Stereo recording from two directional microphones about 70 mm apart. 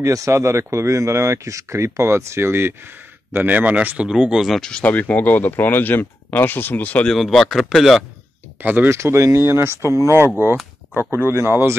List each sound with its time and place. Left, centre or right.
0.0 s speech: right
3.3 s speech: right
4.1 s speech: centre
4.6 s speech: centre
7.1 s speech: centre
8.6 s speech: right
8.9 s speech: right
11.0 s speech: right